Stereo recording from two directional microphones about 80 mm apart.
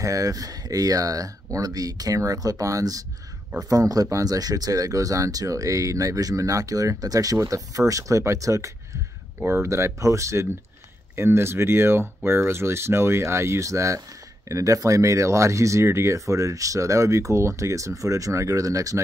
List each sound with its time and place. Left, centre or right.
0.0 s speech: right